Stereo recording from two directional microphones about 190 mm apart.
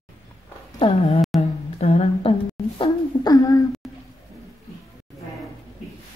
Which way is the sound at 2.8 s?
20° left (ahead or behind).